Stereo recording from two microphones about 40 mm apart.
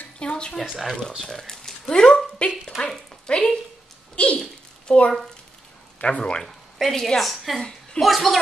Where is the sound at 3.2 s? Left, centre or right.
Left.